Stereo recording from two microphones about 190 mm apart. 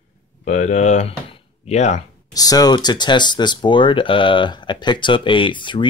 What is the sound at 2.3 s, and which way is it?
Speech, 20° left (ahead or behind).